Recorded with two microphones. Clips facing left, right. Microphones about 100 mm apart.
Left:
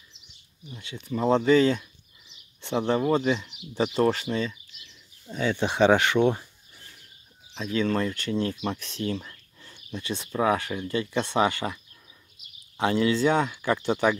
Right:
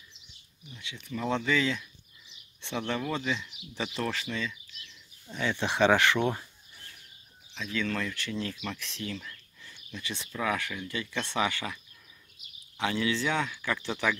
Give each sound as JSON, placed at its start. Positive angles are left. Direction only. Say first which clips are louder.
{"t": 0.7, "sound": "speech", "louder": "left 7 dB", "side_deg": 40}
{"t": 2.9, "sound": "speech", "louder": "left 9 dB", "side_deg": 40}
{"t": 5.5, "sound": "speech", "louder": "left 4 dB", "side_deg": 20}
{"t": 7.5, "sound": "speech", "louder": "left 7 dB", "side_deg": 35}
{"t": 13.5, "sound": "speech", "louder": "left 7 dB", "side_deg": 25}
{"t": 13.8, "sound": "speech", "louder": "left 7 dB", "side_deg": 45}